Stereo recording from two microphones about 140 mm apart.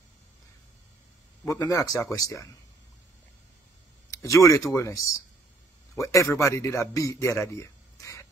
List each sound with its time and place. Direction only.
1.6 s a man's voice: 25° left (ahead or behind)
4.1 s a man's voice: 25° left (ahead or behind)
7.4 s a sound: 20° left (ahead or behind)